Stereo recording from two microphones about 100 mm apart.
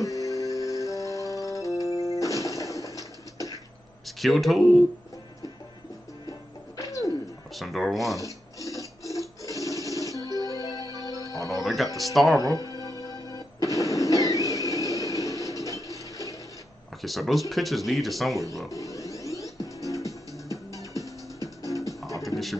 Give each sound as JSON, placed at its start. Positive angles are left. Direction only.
{"t": 0.0, "sound": "music", "side_deg": 35}
{"t": 4.2, "sound": "speech", "side_deg": 0}
{"t": 6.8, "sound": "a sound", "side_deg": 35}
{"t": 7.5, "sound": "speech", "side_deg": 0}
{"t": 8.2, "sound": "a sound", "side_deg": 35}
{"t": 9.5, "sound": "music", "side_deg": 35}
{"t": 11.6, "sound": "music", "side_deg": 0}
{"t": 12.0, "sound": "speech", "side_deg": 0}
{"t": 12.5, "sound": "music", "side_deg": 40}
{"t": 17.0, "sound": "speech", "side_deg": 0}
{"t": 18.7, "sound": "music", "side_deg": 35}
{"t": 22.2, "sound": "a sound", "side_deg": 0}